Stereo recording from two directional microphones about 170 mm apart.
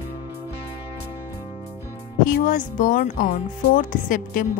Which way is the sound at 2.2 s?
50° left (ahead or behind).